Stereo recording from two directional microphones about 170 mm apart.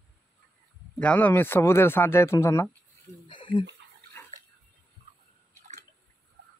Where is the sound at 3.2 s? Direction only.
30° left (ahead or behind).